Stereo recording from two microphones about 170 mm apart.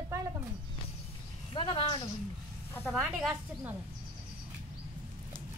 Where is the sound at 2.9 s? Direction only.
Centre (ahead or behind).